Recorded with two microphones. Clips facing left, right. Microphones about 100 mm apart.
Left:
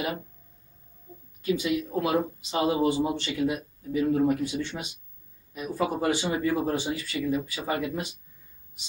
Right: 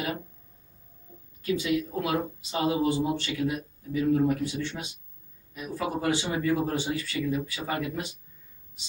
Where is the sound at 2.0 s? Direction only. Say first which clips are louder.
Left 3 dB; 20° left (ahead or behind).